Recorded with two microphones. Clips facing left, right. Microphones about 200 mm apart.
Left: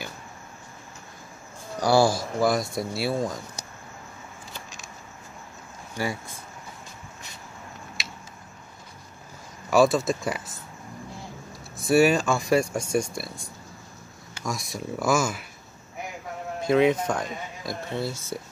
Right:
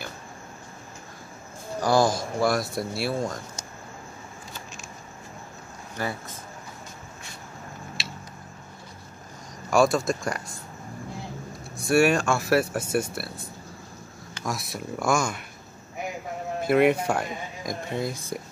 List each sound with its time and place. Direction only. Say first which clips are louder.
1.8 s a man's voice: left 1 dB; 10° left (ahead or behind)
2.4 s speech: left 1 dB; centre (ahead or behind)
5.9 s a man's voice: left 1 dB; 10° left (ahead or behind)
9.7 s speech: left 1 dB; centre (ahead or behind)
11.7 s speech: left 1 dB; centre (ahead or behind)
16.6 s speech: even; 10° right (ahead or behind)